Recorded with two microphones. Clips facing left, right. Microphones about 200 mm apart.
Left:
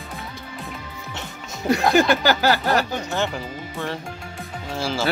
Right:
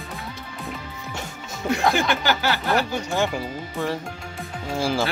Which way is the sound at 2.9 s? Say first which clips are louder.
Right 1 dB; 10° right (ahead or behind).